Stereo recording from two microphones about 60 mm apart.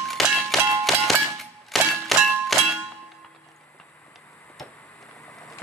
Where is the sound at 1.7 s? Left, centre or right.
Centre.